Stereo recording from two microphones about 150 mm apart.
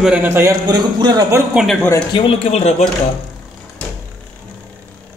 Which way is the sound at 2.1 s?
40° left (ahead or behind).